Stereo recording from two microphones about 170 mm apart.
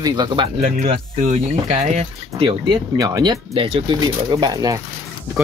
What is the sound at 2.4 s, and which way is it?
Speech, 30° right (ahead or behind).